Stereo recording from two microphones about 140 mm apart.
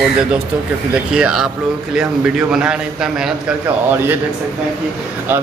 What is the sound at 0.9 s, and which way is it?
A man's voice, 5° right (ahead or behind).